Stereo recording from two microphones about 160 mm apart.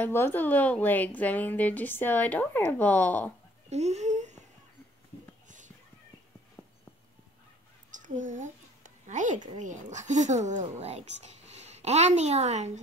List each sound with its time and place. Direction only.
0.0 s a woman's voice: 15° left (ahead or behind)
3.7 s speech: 45° right (ahead or behind)
7.9 s a sound: 55° right (ahead or behind)
9.6 s speech: 50° right (ahead or behind)